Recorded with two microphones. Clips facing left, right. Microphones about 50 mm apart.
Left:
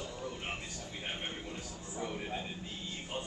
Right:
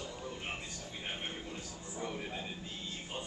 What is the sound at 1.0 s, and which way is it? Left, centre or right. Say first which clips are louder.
Speech: left 1 dB; centre.